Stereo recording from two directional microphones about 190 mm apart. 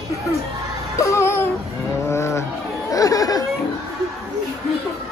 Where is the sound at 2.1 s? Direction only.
15° left (ahead or behind).